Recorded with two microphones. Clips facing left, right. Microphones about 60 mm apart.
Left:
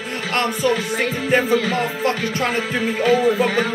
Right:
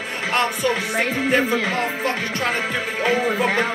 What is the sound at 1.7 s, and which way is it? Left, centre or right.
Music, centre.